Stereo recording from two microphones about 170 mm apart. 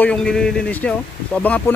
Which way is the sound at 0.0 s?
5° left (ahead or behind).